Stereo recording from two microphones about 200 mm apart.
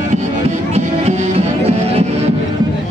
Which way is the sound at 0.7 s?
30° right (ahead or behind).